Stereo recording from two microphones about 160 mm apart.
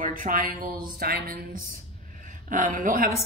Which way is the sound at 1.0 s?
70° right (ahead or behind).